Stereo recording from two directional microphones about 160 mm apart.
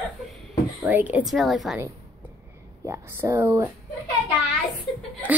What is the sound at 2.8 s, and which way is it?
Speech, 15° right (ahead or behind).